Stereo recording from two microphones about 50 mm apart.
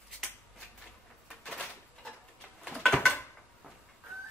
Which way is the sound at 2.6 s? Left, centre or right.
Centre.